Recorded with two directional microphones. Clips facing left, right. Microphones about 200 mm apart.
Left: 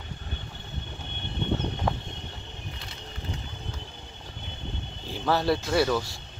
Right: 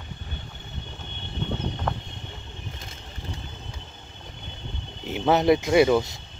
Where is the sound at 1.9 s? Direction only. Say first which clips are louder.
Left 1 dB; 10° left (ahead or behind).